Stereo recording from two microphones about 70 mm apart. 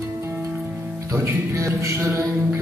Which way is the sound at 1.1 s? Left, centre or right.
Right.